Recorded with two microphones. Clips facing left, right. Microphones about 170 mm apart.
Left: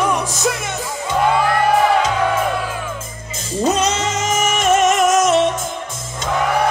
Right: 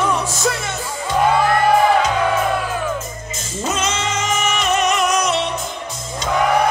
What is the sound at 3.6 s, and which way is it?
Music, 35° left (ahead or behind).